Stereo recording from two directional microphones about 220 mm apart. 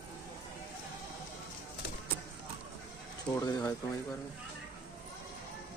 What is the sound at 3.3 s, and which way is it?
Speech, 15° left (ahead or behind).